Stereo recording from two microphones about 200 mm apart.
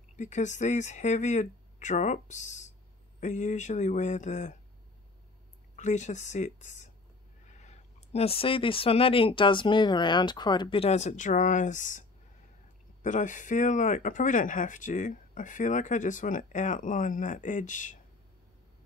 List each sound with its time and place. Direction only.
0.1 s speech: 35° left (ahead or behind)
5.8 s speech: 35° left (ahead or behind)
13.0 s speech: 40° left (ahead or behind)